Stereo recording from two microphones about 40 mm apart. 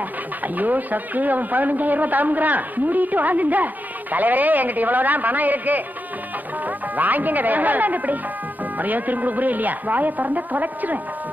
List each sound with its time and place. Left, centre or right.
0.4 s speech: right